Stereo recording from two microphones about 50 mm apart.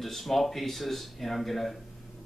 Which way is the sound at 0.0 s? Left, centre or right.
Centre.